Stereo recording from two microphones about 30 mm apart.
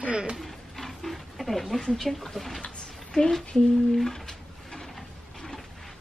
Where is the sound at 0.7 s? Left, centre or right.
Centre.